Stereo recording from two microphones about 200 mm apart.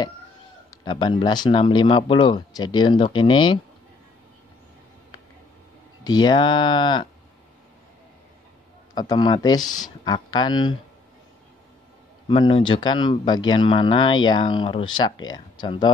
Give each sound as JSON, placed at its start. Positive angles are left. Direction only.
{"t": 0.8, "sound": "speech", "side_deg": 25}
{"t": 6.0, "sound": "speech", "side_deg": 20}
{"t": 8.9, "sound": "speech", "side_deg": 20}
{"t": 12.3, "sound": "speech", "side_deg": 25}